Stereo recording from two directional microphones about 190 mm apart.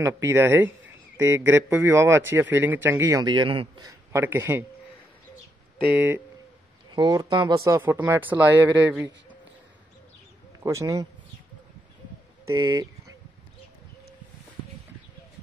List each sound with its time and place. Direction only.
0.0 s speech: 15° right (ahead or behind)
4.1 s speech: 10° right (ahead or behind)
5.9 s speech: 10° right (ahead or behind)
6.9 s speech: 20° right (ahead or behind)
10.6 s speech: 15° right (ahead or behind)
12.4 s speech: 20° right (ahead or behind)